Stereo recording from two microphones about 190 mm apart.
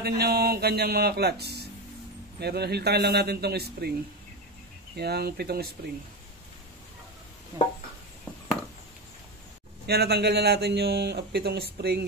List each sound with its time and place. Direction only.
0.0 s a man's voice: 55° right (ahead or behind)
4.9 s a man's voice: 55° right (ahead or behind)
9.8 s a man's voice: 60° right (ahead or behind)